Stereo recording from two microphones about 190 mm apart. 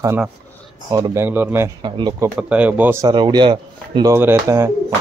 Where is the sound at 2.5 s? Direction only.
10° right (ahead or behind).